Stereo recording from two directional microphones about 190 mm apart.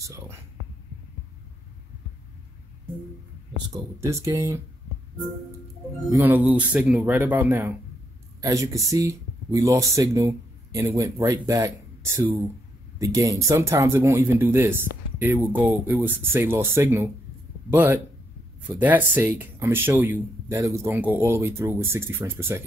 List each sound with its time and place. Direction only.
0.0 s whispering: 15° right (ahead or behind)
3.7 s speech: 15° right (ahead or behind)
6.0 s speech: 10° right (ahead or behind)